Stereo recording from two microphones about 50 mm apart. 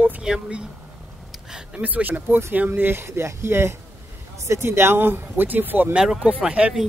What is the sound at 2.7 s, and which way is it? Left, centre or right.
Speech, right.